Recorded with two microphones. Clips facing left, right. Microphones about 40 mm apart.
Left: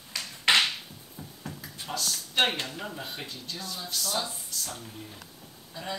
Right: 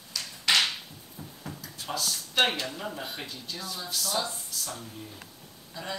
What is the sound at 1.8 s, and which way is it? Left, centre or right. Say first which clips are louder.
Speech: right 1 dB; centre.